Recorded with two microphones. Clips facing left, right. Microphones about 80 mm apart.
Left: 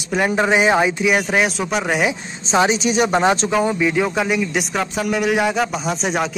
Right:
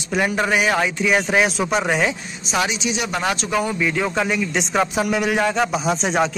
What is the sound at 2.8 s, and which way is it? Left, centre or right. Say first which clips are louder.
Speech: left 7 dB; left.